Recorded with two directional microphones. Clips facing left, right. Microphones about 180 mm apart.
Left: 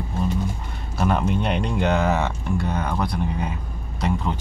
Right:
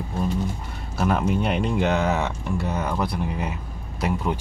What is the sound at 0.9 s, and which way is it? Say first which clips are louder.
Speech: even; centre (ahead or behind).